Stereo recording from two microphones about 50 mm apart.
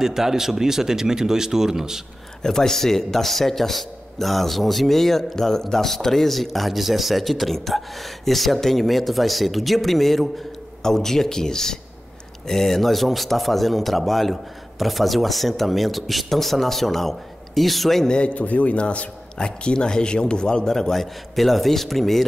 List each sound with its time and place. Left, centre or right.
0.0 s speech: centre
2.4 s a man's voice: centre
18.0 s a man's voice: centre